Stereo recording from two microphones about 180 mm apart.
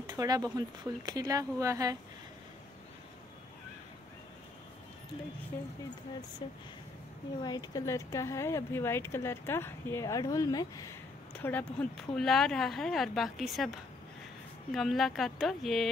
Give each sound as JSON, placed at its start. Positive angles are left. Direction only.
{"t": 0.1, "sound": "speech", "side_deg": -20}
{"t": 6.4, "sound": "speech", "side_deg": 25}
{"t": 11.3, "sound": "a woman's voice", "side_deg": 10}